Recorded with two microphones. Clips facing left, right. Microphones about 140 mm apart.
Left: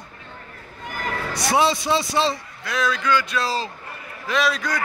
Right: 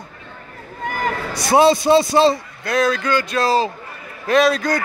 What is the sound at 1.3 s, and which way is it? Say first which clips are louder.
A man's voice: right 7 dB; 40° right (ahead or behind).